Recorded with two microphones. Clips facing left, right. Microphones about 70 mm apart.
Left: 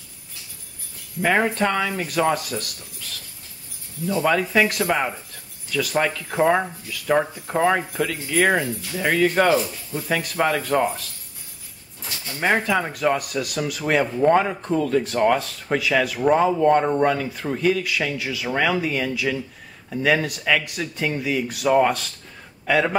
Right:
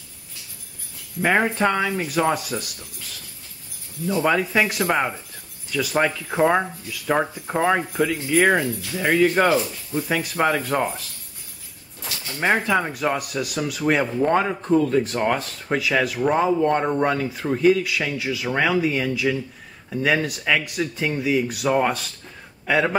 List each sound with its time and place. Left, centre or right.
1.2 s speech: centre
4.1 s speech: centre
12.6 s speech: centre